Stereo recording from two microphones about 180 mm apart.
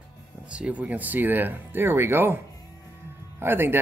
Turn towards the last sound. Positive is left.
turn(degrees=-10)  # may be behind; listen again after turning